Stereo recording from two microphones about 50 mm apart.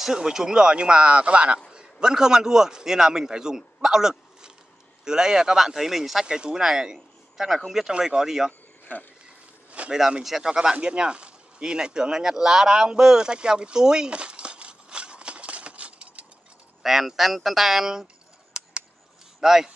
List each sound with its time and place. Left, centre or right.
0.0 s a man's voice: centre
6.2 s a man's voice: centre
8.9 s speech: left
9.7 s a sound: right
10.2 s speech: centre; by 16.3 s right
16.8 s speech: centre
18.5 s a sound: centre
19.4 s speech: centre